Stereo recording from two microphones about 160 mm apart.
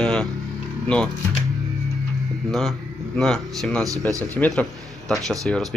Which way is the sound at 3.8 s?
20° right (ahead or behind).